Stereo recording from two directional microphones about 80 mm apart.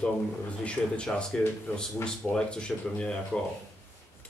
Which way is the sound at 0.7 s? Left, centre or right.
Centre.